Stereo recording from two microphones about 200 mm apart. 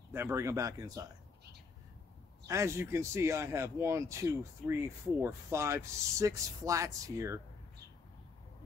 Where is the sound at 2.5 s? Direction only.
15° right (ahead or behind).